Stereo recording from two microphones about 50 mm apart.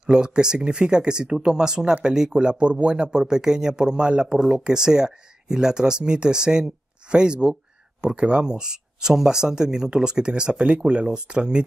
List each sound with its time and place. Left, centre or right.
0.0 s speech: centre